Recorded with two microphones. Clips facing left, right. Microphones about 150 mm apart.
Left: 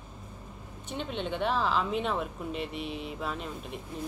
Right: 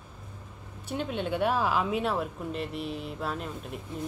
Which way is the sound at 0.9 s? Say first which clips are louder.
Right 3 dB; 5° right (ahead or behind).